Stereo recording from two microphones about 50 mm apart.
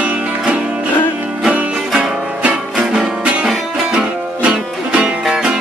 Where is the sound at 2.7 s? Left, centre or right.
Centre.